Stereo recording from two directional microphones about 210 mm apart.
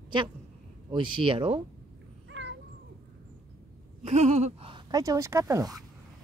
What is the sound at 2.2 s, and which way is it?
Cat, 55° right (ahead or behind).